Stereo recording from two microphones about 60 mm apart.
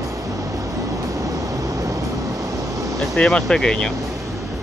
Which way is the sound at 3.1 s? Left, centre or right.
Centre.